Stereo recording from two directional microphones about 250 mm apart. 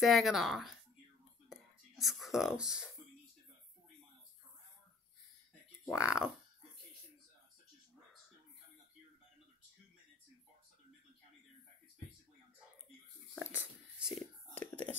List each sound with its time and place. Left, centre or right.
0.0 s speech: centre
1.5 s whispering: centre
5.9 s speech: centre
13.6 s whispering: centre